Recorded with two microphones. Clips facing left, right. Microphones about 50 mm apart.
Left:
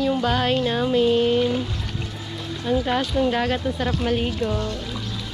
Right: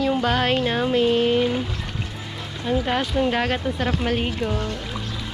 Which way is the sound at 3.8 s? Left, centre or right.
Right.